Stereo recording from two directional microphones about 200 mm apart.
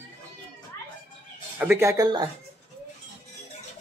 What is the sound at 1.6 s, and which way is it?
Speech, 10° right (ahead or behind).